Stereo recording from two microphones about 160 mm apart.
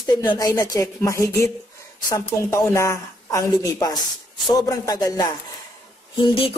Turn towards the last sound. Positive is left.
turn(degrees=30)  # may be behind; listen again after turning